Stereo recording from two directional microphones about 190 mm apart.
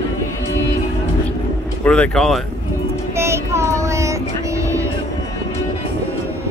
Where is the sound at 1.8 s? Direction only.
5° left (ahead or behind).